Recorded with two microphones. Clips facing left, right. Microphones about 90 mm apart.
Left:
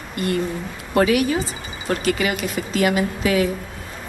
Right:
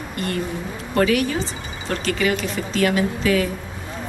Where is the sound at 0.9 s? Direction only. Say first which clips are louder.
Left 2 dB; 10° left (ahead or behind).